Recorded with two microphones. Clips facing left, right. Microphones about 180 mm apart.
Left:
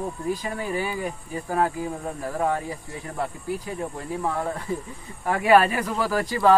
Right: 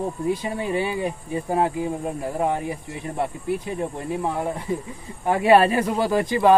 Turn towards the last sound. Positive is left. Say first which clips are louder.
# right 2 dB
turn(degrees=-20)  # may be behind; listen again after turning